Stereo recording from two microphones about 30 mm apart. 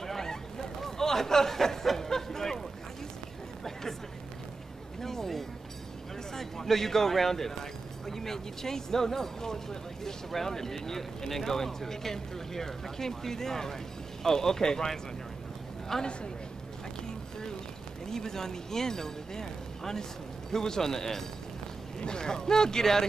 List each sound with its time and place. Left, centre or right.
0.0 s a sound: centre
5.0 s a sound: centre
6.3 s speech: centre
15.9 s speech: centre
18.0 s speech: centre
22.0 s speech: left